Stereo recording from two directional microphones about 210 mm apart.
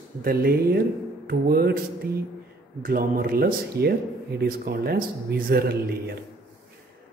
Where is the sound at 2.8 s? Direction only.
45° right (ahead or behind).